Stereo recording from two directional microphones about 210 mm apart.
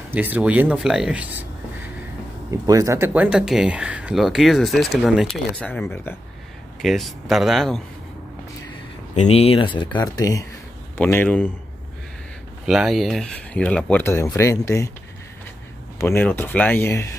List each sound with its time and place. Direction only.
0.1 s speech: 10° right (ahead or behind)
2.5 s speech: 15° right (ahead or behind); by 7.8 s centre (ahead or behind)
9.1 s speech: 30° left (ahead or behind); by 11.5 s 10° left (ahead or behind)
12.6 s speech: centre (ahead or behind); by 14.9 s 15° left (ahead or behind)
16.0 s speech: 10° left (ahead or behind)